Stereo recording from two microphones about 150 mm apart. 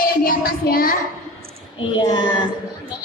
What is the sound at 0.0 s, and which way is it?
Child singing, 75° left (ahead or behind).